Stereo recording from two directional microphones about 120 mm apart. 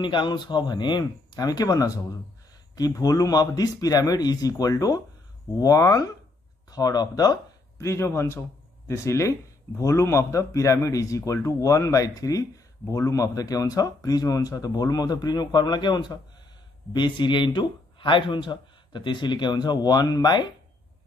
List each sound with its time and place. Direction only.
0.0 s a man's voice: 40° left (ahead or behind)